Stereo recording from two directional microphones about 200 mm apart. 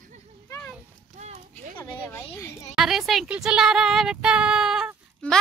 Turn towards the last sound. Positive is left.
turn(degrees=-5)  # may be behind; listen again after turning